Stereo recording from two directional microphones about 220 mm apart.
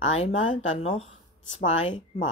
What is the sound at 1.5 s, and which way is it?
Speech, 60° left (ahead or behind).